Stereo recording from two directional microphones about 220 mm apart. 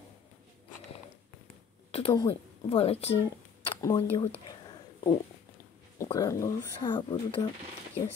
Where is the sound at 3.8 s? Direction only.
15° left (ahead or behind).